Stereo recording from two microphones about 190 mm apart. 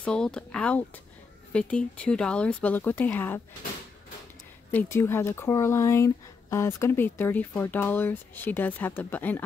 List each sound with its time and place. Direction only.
0.0 s speech: 5° left (ahead or behind)
4.6 s speech: 10° left (ahead or behind)